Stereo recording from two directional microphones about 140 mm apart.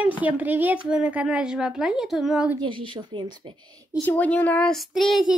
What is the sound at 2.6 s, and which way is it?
Speech, 35° right (ahead or behind).